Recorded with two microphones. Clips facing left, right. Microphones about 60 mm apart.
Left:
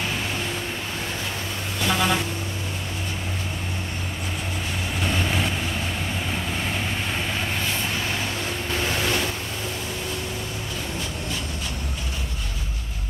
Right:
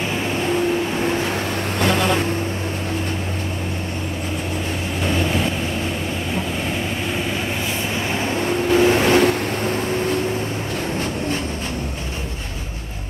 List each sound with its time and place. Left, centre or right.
1.8 s vehicle: right
8.1 s vehicle: right
8.7 s waves: right